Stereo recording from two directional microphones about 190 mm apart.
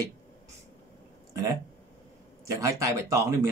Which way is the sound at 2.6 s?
15° right (ahead or behind).